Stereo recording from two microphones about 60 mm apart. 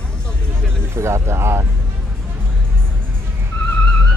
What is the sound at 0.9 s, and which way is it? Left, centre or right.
Speech, right.